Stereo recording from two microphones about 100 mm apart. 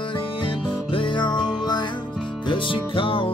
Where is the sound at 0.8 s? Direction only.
55° left (ahead or behind).